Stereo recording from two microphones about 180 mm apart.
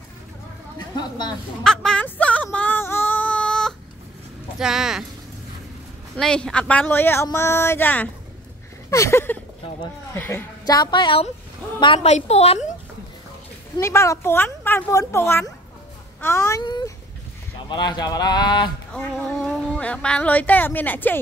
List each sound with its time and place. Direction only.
0.7 s speech: 25° left (ahead or behind)
1.6 s a sound: 5° left (ahead or behind)
4.6 s speech: 5° right (ahead or behind)
6.1 s a man's voice: 5° left (ahead or behind)
10.7 s a woman's voice: 25° left (ahead or behind)
13.7 s a man's voice: 15° left (ahead or behind)
18.9 s speech: 5° left (ahead or behind)